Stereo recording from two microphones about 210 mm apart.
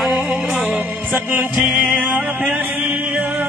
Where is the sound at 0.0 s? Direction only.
Centre (ahead or behind).